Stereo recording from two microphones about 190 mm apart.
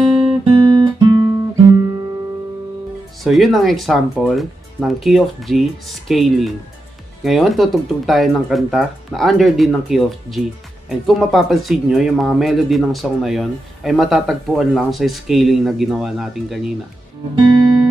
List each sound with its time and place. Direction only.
0.2 s guitar: 30° right (ahead or behind)
3.3 s speech: centre (ahead or behind)